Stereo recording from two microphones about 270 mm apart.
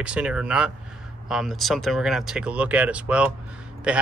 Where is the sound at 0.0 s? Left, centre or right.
Centre.